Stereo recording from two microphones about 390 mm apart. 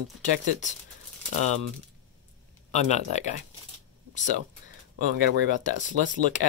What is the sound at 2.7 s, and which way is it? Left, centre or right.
Speech, centre.